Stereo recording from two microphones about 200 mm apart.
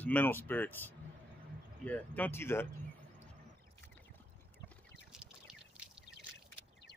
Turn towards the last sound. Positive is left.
turn(degrees=-5)  # may be behind; listen again after turning